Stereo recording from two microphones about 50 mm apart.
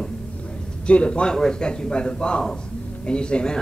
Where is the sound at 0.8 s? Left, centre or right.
Left.